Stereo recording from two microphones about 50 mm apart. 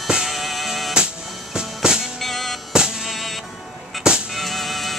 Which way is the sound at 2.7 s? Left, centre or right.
Centre.